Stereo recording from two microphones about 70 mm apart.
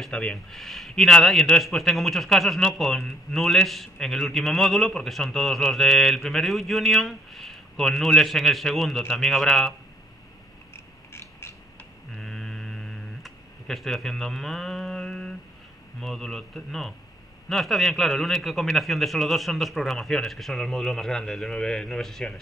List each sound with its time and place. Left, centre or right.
0.1 s speech: centre
0.6 s a man's voice: centre
10.7 s a sound: left
12.2 s mantra: centre
16.0 s a man's voice: centre